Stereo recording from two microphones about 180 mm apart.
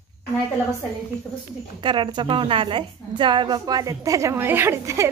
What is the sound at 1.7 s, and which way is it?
A woman's voice, 25° right (ahead or behind).